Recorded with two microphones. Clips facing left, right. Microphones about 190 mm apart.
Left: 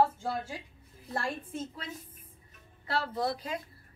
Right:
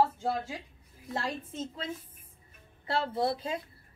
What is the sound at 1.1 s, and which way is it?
Speech, 20° right (ahead or behind).